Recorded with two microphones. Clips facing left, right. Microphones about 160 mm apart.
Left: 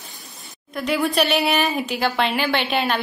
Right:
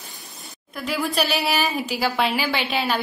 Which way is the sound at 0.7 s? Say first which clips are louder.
Left 4 dB; centre (ahead or behind).